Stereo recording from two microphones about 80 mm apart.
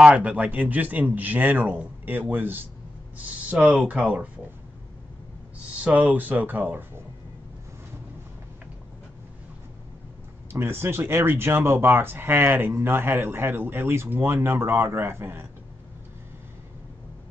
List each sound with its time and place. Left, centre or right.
0.0 s speech: centre
5.9 s speech: centre
10.5 s speech: right